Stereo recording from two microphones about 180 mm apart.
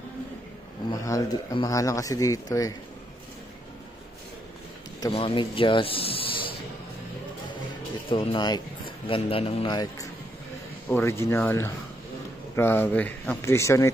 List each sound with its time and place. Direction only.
0.8 s a man's voice: 20° left (ahead or behind)
5.0 s a man's voice: 30° left (ahead or behind)
8.1 s a man's voice: 30° left (ahead or behind)